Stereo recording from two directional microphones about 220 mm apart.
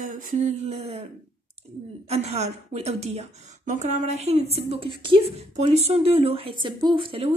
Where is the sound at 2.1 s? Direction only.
30° right (ahead or behind).